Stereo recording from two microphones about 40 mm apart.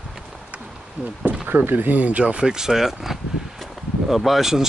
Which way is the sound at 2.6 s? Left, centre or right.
Centre.